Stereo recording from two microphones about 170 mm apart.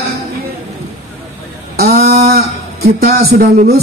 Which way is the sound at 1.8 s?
65° right (ahead or behind).